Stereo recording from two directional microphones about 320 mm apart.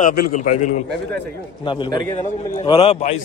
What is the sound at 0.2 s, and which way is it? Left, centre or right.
A man's voice, left.